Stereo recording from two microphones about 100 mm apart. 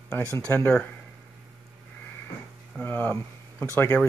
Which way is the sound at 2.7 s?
20° left (ahead or behind).